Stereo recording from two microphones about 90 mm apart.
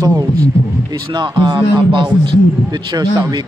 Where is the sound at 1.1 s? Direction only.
55° right (ahead or behind).